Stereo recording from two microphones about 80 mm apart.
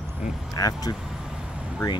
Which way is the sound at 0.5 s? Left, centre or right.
Left.